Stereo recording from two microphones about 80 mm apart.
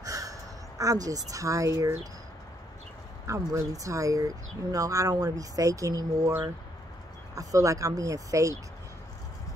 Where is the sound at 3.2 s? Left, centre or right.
Right.